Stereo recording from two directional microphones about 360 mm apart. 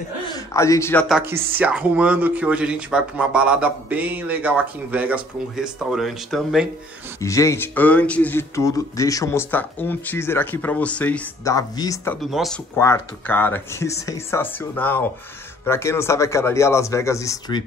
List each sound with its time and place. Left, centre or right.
0.5 s speech: centre